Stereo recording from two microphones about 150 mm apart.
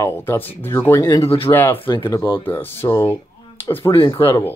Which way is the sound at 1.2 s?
40° left (ahead or behind).